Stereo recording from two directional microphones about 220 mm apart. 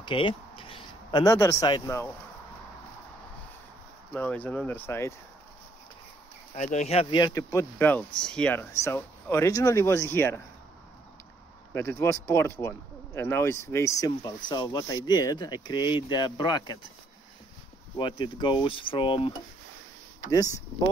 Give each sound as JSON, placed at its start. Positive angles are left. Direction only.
{"t": 0.0, "sound": "speech", "side_deg": 25}
{"t": 4.1, "sound": "speech", "side_deg": 10}
{"t": 6.5, "sound": "speech", "side_deg": 30}
{"t": 11.7, "sound": "speech", "side_deg": 10}
{"t": 17.9, "sound": "speech", "side_deg": 20}